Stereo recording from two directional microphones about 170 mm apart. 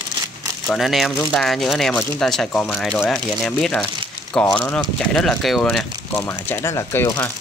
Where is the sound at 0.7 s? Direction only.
Centre (ahead or behind).